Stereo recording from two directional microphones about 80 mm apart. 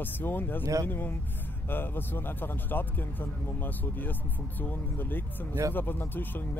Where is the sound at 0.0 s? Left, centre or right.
Left.